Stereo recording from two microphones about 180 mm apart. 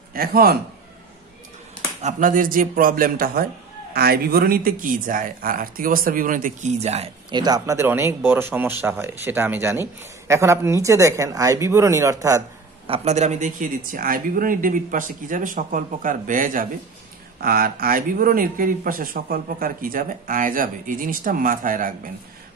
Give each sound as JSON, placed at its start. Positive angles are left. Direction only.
{"t": 0.1, "sound": "a man's voice", "side_deg": -55}
{"t": 2.0, "sound": "a man's voice", "side_deg": -45}
{"t": 12.8, "sound": "speech", "side_deg": -35}